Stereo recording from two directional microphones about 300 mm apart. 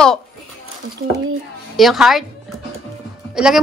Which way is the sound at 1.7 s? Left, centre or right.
Centre.